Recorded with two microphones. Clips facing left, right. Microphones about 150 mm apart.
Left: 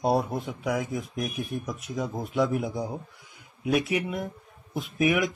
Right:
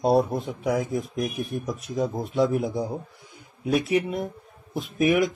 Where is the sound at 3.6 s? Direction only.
30° right (ahead or behind).